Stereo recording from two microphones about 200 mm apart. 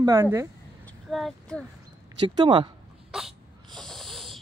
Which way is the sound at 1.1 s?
Centre (ahead or behind).